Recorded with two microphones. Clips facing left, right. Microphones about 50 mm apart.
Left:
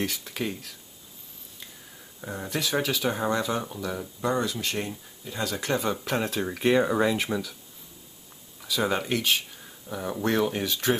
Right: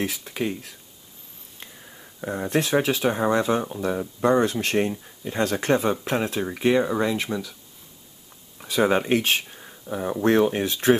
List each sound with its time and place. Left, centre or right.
0.0 s speech: centre
2.2 s speech: right
3.1 s speech: centre; by 5.9 s right
6.1 s speech: centre
8.5 s a sound: right
8.8 s speech: right
9.2 s speech: right
9.6 s a sound: right
10.2 s speech: right